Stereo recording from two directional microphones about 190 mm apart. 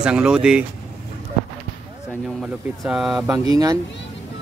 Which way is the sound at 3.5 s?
20° right (ahead or behind).